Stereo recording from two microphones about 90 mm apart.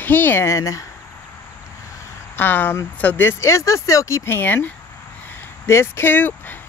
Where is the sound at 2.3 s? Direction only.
20° left (ahead or behind).